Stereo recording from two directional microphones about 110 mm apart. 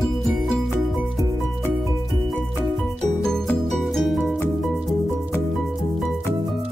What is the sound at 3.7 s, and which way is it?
Music, centre (ahead or behind).